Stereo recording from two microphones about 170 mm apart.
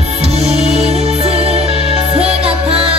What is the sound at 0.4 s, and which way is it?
Music, 40° right (ahead or behind).